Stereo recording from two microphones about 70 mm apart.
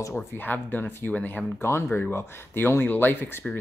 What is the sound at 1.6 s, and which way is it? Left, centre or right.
Speech, left.